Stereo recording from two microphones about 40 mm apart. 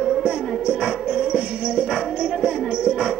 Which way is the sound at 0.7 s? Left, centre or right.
Centre.